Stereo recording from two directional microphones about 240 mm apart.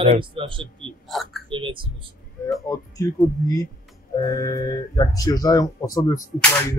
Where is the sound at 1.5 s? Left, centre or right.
Right.